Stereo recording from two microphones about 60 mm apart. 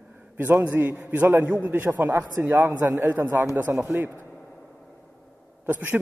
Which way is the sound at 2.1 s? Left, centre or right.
Right.